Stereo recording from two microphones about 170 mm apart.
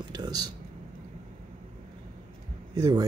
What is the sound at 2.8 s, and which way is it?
Speech, 25° right (ahead or behind).